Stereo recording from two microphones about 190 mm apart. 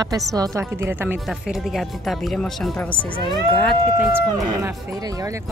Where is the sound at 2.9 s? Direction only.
25° left (ahead or behind).